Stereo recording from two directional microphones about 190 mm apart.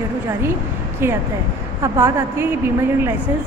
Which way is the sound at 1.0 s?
15° right (ahead or behind).